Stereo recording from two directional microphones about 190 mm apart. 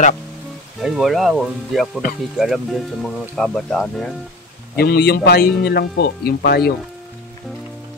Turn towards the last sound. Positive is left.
turn(degrees=55)  # may be behind; listen again after turning